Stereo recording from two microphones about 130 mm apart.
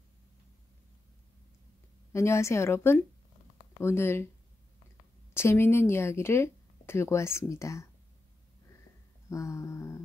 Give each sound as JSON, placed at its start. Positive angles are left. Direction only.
{"t": 2.1, "sound": "speech", "side_deg": 20}
{"t": 5.3, "sound": "speech", "side_deg": 20}
{"t": 9.3, "sound": "speech", "side_deg": 25}